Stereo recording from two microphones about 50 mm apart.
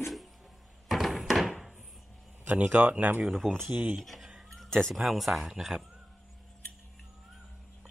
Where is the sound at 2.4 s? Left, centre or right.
Right.